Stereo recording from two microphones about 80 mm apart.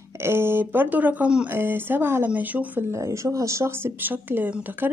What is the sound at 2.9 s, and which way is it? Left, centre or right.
Speech, right.